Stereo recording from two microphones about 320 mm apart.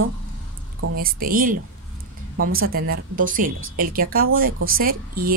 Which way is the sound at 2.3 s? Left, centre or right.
Right.